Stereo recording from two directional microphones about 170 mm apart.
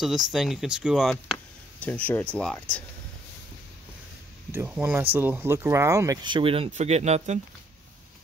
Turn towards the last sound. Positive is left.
turn(degrees=-40)  # may be behind; listen again after turning